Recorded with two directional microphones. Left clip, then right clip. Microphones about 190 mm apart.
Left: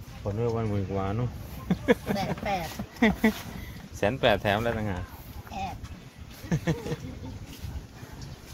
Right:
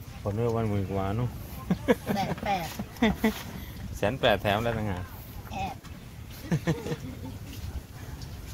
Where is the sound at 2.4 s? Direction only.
20° left (ahead or behind).